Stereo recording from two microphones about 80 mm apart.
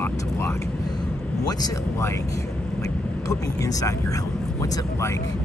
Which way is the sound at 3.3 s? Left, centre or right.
Left.